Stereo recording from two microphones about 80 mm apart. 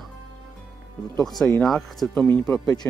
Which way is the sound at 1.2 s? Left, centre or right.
Centre.